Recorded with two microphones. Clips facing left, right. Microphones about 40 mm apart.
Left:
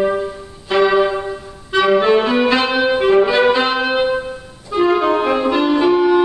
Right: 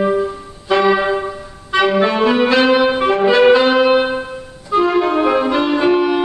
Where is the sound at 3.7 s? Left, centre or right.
Centre.